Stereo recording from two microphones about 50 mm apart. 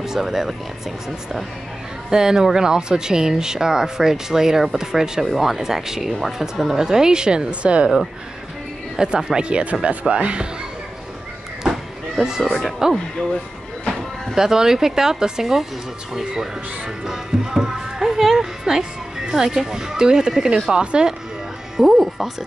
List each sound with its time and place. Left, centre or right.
0.0 s speech: centre
2.0 s speech: centre
8.9 s speech: centre
11.6 s a sound: centre
12.5 s speech: centre
14.3 s speech: centre
17.0 s speech: centre
21.7 s speech: centre